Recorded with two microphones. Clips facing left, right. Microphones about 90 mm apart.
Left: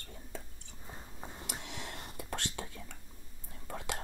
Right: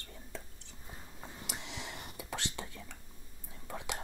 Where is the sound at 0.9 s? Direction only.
15° left (ahead or behind).